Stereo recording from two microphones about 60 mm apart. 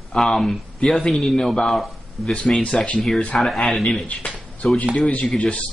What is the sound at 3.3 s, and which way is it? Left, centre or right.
Speech, centre.